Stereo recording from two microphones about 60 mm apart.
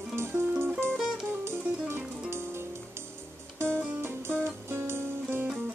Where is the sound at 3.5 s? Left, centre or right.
Right.